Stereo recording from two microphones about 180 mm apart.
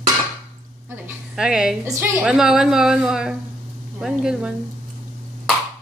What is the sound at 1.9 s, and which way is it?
Speech, 20° right (ahead or behind).